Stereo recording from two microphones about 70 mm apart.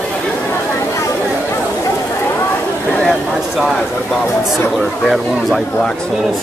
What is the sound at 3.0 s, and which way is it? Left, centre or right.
Vehicle, centre.